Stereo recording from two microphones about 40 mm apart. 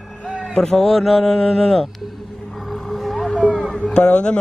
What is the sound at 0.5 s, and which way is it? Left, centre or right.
A man's voice, centre.